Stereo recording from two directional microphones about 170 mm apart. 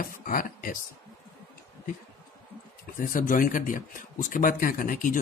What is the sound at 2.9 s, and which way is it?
Speech, 50° left (ahead or behind).